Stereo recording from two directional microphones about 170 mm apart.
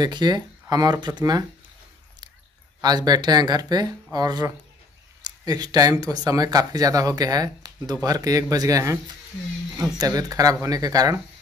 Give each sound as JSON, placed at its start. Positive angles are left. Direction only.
{"t": 0.0, "sound": "speech", "side_deg": -25}
{"t": 2.8, "sound": "speech", "side_deg": -25}